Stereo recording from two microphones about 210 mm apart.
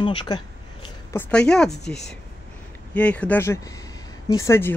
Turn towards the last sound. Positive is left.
turn(degrees=10)  # may be behind; listen again after turning